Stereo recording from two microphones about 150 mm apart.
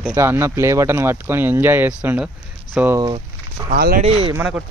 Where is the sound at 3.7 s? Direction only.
75° right (ahead or behind).